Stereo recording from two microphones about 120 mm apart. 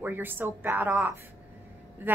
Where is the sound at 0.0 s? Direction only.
15° right (ahead or behind).